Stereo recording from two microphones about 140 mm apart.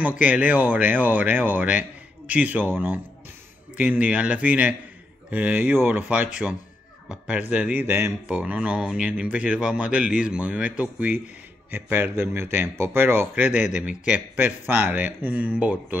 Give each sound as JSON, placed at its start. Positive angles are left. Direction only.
{"t": 0.2, "sound": "speech", "side_deg": -10}